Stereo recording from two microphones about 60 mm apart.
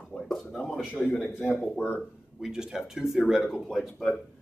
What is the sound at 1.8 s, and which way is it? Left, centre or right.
Speech, left.